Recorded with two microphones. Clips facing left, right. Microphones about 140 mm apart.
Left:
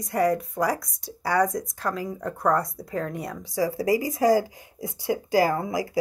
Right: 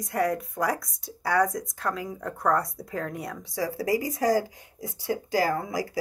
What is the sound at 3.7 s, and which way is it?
Speech, 15° left (ahead or behind).